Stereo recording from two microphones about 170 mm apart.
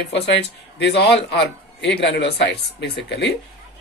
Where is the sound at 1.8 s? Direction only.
90° left.